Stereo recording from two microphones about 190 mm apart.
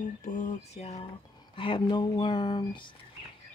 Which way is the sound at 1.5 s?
25° left (ahead or behind).